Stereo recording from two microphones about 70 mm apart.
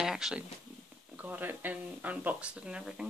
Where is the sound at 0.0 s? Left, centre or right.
Centre.